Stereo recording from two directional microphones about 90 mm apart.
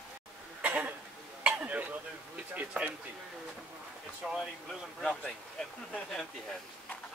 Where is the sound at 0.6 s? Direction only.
15° right (ahead or behind).